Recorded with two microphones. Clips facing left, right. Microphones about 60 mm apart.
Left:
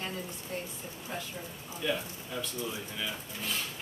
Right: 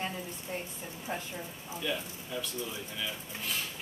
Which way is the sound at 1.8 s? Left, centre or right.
Centre.